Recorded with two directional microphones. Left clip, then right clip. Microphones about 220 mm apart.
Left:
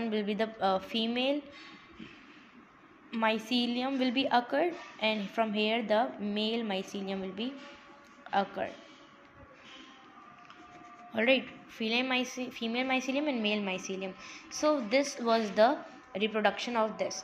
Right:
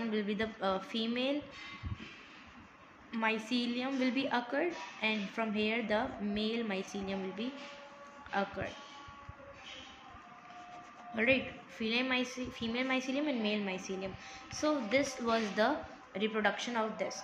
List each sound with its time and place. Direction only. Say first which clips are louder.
0.1 s a woman's voice: left 3 dB; 20° left (ahead or behind)
3.1 s a woman's voice: left 4 dB; 20° left (ahead or behind)
11.1 s a woman's voice: left 3 dB; 20° left (ahead or behind)